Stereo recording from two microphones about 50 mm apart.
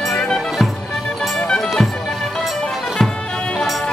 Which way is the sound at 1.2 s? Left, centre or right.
Centre.